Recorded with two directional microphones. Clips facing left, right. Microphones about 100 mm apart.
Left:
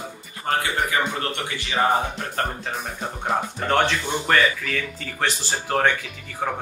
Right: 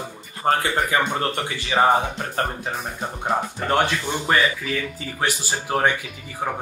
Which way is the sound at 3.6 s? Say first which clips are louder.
Even; 10° right (ahead or behind).